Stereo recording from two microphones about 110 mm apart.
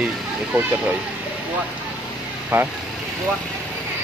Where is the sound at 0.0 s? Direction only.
15° right (ahead or behind).